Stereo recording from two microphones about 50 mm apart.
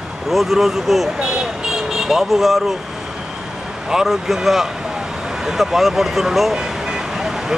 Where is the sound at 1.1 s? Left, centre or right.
Centre.